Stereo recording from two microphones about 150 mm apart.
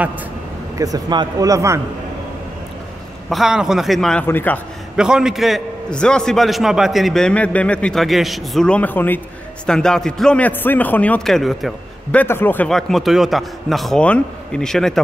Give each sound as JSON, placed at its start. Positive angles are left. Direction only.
{"t": 0.7, "sound": "a man's voice", "side_deg": -25}
{"t": 3.3, "sound": "a man's voice", "side_deg": 0}
{"t": 4.9, "sound": "a man's voice", "side_deg": -5}
{"t": 12.6, "sound": "a man's voice", "side_deg": 0}